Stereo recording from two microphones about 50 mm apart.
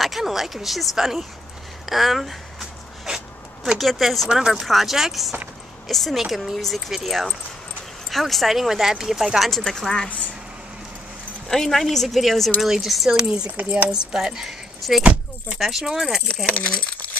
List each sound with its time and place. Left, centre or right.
0.0 s speech: centre
1.9 s a sound: centre
3.7 s speech: centre
4.3 s speech: centre
9.5 s speech: centre
11.4 s speech: centre
13.6 s speech: right
14.1 s speech: centre
16.4 s speech: left